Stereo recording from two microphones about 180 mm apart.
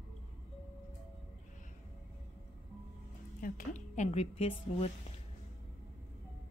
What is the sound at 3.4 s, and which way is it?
A woman's voice, 50° left (ahead or behind).